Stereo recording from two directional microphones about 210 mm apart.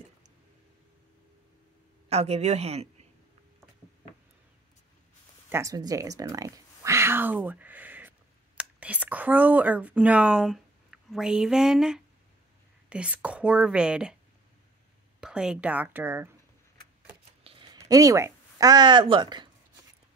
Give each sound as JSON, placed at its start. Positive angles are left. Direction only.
{"t": 2.0, "sound": "a woman's voice", "side_deg": -30}
{"t": 5.5, "sound": "speech", "side_deg": -15}
{"t": 15.1, "sound": "speech", "side_deg": -5}
{"t": 17.4, "sound": "a sound", "side_deg": -25}